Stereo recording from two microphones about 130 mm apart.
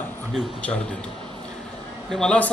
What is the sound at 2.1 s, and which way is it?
Speech, 5° left (ahead or behind).